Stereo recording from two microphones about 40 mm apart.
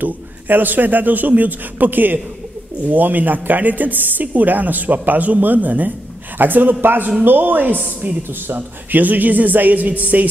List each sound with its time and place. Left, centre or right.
0.0 s a woman's voice: right
8.2 s a woman's voice: right